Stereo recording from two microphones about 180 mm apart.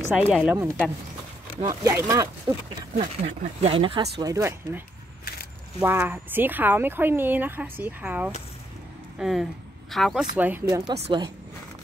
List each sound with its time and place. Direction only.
0.3 s a woman's voice: 5° right (ahead or behind)
1.6 s a woman's voice: 15° right (ahead or behind)
3.0 s speech: 35° right (ahead or behind)
4.2 s a woman's voice: 15° right (ahead or behind); by 10.2 s centre (ahead or behind)
10.3 s a woman's voice: 10° right (ahead or behind)
11.1 s speech: 25° right (ahead or behind)